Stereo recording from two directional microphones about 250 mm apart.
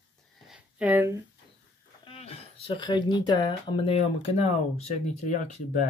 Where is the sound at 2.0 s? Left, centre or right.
Left.